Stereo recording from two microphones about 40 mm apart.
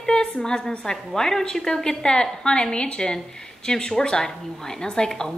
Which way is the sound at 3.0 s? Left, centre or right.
Centre.